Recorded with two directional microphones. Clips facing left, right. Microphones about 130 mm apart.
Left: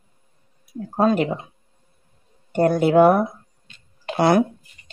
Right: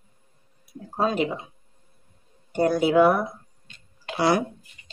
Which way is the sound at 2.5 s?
50° left (ahead or behind).